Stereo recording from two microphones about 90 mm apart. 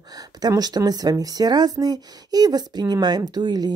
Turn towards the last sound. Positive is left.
turn(degrees=-50)  # may be behind; listen again after turning